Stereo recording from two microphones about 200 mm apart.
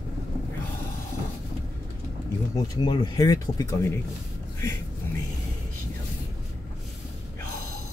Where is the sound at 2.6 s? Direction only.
20° left (ahead or behind).